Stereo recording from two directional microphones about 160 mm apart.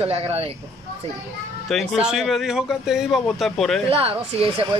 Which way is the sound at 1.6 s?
5° right (ahead or behind).